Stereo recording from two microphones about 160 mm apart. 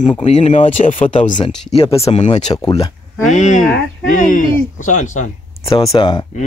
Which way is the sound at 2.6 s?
25° left (ahead or behind).